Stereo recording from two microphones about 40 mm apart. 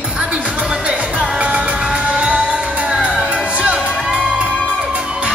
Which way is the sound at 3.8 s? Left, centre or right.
Centre.